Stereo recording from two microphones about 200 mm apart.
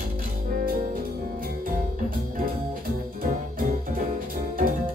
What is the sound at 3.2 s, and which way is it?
Music, 45° right (ahead or behind).